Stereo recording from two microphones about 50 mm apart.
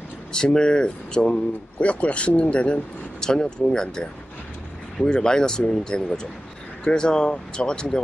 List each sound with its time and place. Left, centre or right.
0.3 s speech: centre
3.2 s speech: centre